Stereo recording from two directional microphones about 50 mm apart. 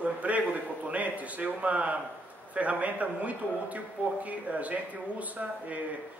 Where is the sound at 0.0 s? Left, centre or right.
Right.